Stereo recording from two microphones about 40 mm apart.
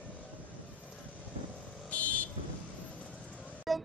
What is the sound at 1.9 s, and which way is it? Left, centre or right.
Vehicle, left.